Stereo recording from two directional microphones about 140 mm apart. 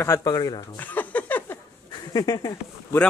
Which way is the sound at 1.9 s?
30° left (ahead or behind).